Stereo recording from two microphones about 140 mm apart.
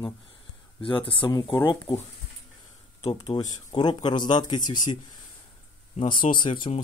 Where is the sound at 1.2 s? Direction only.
30° left (ahead or behind).